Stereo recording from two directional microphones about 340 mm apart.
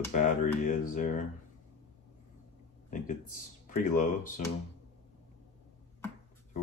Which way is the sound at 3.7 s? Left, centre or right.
Left.